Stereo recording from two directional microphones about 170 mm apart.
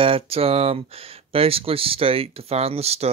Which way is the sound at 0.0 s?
35° right (ahead or behind).